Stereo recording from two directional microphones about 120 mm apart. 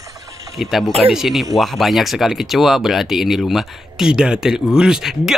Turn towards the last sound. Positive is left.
turn(degrees=-5)  # may be behind; listen again after turning